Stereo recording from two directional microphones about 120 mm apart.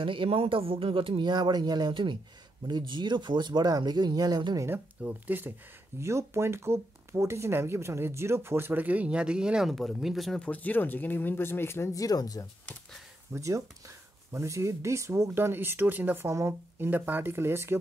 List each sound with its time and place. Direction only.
0.0 s speech: 45° right (ahead or behind)
4.6 s speech: 15° right (ahead or behind); by 12.4 s 30° left (ahead or behind)
13.3 s speech: 25° right (ahead or behind)